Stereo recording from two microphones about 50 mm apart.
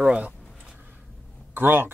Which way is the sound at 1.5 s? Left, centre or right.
Right.